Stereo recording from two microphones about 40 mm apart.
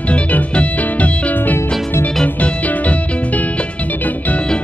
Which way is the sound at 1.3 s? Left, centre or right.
Left.